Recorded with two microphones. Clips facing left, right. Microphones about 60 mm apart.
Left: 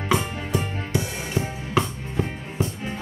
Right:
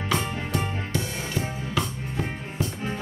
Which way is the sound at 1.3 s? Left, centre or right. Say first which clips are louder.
Left 5 dB; left.